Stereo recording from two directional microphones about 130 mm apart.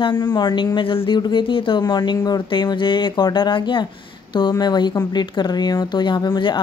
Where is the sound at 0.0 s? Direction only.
35° left (ahead or behind).